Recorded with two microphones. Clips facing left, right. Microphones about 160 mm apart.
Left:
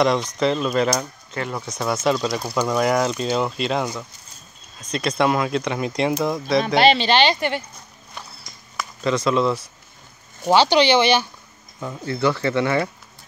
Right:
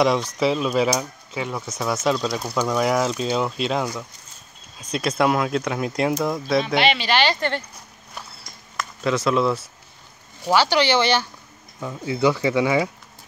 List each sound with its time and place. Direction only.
0.4 s speech: 5° right (ahead or behind)
6.6 s speech: 40° left (ahead or behind); by 7.6 s 15° left (ahead or behind)
8.7 s speech: 5° right (ahead or behind)
10.5 s speech: 20° left (ahead or behind)
11.8 s speech: 5° right (ahead or behind)